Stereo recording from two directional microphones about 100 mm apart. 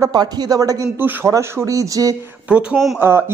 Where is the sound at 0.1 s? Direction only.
40° right (ahead or behind).